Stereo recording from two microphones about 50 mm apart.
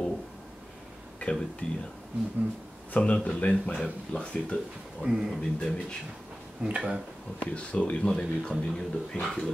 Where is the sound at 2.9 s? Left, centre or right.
Left.